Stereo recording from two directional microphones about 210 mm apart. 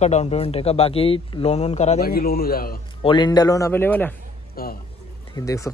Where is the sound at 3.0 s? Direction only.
20° left (ahead or behind).